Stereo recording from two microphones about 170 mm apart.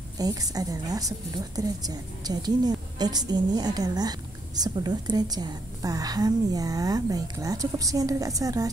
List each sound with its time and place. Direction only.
0.2 s a woman's voice: 20° right (ahead or behind)